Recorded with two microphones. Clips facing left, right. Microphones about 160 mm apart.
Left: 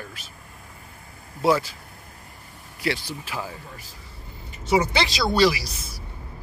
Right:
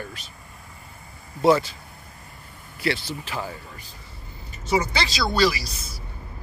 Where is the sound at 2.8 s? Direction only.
10° left (ahead or behind).